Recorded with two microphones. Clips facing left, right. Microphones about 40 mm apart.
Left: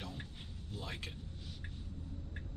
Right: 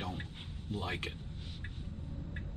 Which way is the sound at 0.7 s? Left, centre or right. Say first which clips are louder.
Right 7 dB; right.